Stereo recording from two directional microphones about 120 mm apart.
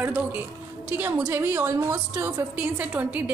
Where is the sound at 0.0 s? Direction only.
15° right (ahead or behind).